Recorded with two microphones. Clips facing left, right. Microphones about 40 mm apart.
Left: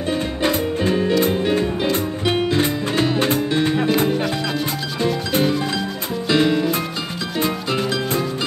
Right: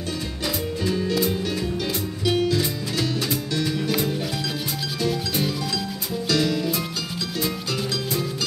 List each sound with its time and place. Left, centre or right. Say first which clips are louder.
0.4 s music: left 6 dB; left
5.3 s music: left 6 dB; left